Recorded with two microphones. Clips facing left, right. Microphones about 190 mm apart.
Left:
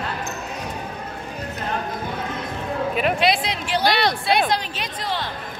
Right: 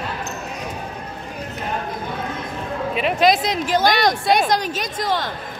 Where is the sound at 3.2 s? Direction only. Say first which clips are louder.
Right 4 dB; 45° right (ahead or behind).